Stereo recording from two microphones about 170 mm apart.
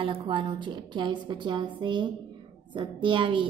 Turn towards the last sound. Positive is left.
turn(degrees=-30)  # may be behind; listen again after turning